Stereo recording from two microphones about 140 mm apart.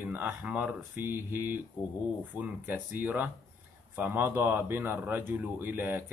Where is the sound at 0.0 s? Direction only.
15° right (ahead or behind).